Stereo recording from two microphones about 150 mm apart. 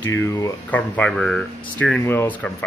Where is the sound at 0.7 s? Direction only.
10° left (ahead or behind).